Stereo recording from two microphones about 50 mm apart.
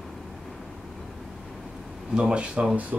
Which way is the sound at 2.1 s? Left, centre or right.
Centre.